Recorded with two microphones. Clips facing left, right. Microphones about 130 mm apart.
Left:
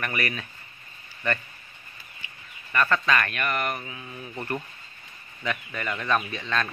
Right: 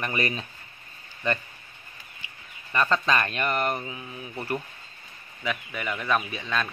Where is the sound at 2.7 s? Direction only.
20° right (ahead or behind).